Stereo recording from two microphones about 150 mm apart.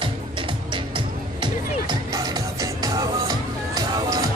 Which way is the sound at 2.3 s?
25° right (ahead or behind).